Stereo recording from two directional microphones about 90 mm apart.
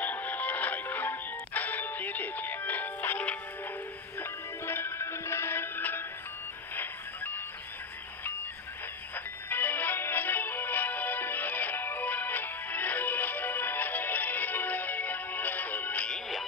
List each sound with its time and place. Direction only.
0.0 s music: 20° left (ahead or behind)
9.1 s music: 20° left (ahead or behind)